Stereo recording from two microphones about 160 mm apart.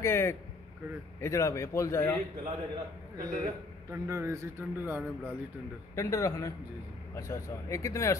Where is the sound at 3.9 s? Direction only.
15° right (ahead or behind).